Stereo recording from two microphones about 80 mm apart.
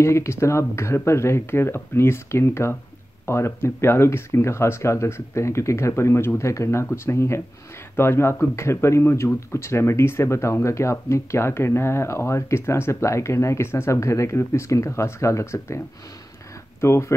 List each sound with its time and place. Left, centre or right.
0.0 s speech: left
16.8 s speech: left